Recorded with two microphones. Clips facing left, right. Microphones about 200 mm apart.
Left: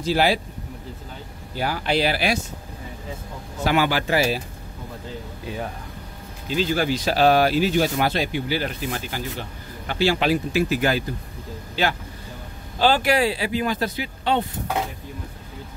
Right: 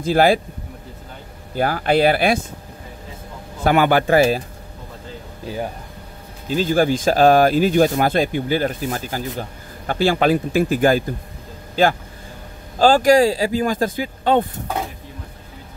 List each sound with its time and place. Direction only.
0.0 s speech: 50° right (ahead or behind)
1.5 s speech: 50° right (ahead or behind)
3.6 s speech: 55° right (ahead or behind)
6.5 s speech: 45° right (ahead or behind)